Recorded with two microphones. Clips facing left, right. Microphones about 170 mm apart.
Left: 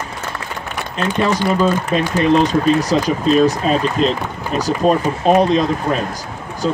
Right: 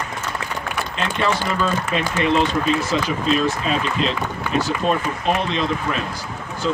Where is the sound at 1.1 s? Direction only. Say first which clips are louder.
Left 5 dB; 40° left (ahead or behind).